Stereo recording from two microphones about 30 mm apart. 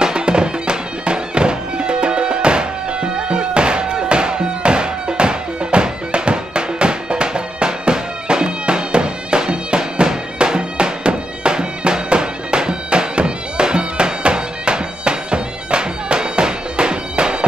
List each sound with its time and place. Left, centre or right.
0.0 s music: right
10.0 s bagpipes: right